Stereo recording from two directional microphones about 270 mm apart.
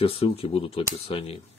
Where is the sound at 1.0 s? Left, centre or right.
Left.